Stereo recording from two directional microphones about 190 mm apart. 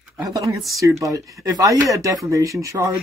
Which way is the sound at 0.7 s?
15° right (ahead or behind).